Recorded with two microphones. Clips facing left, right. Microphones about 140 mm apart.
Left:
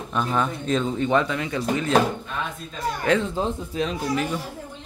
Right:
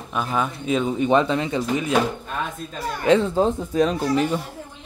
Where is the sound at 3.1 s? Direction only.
35° right (ahead or behind).